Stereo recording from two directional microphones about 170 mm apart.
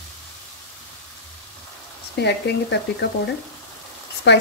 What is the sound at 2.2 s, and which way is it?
Speech, 80° left.